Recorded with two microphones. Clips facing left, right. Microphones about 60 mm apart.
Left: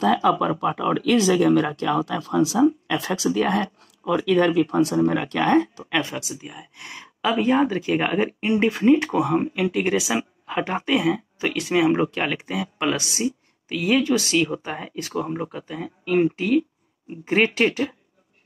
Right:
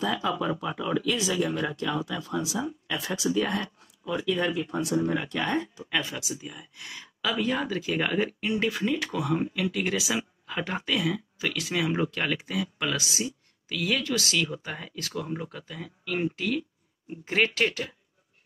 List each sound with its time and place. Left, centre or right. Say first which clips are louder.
0.0 s speech: left 9 dB; left
2.6 s speech: left 17 dB; left
2.9 s speech: left 5 dB; left
6.4 s speech: left 3 dB; left
13.7 s speech: left 8 dB; left